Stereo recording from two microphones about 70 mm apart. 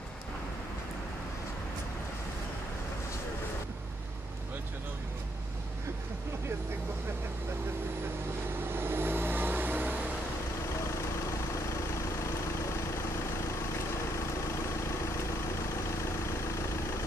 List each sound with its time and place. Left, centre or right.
8.7 s vehicle: right